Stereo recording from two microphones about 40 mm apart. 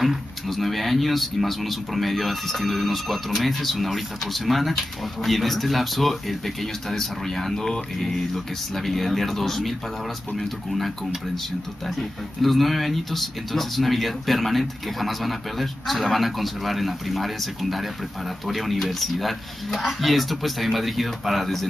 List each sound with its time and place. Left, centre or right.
0.5 s speech: centre
12.0 s speech: centre